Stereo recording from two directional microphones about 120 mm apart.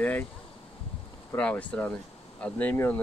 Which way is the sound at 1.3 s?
10° left (ahead or behind).